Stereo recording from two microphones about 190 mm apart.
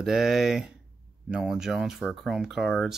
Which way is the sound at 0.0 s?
Centre (ahead or behind).